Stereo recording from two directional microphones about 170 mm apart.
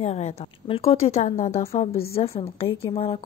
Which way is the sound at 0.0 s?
40° left (ahead or behind).